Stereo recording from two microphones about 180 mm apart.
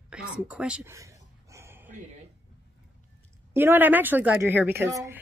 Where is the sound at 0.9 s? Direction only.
15° right (ahead or behind).